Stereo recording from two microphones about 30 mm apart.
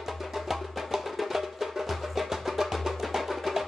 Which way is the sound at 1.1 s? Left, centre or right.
Centre.